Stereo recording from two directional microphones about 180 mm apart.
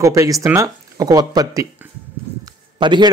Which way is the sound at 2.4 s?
25° right (ahead or behind).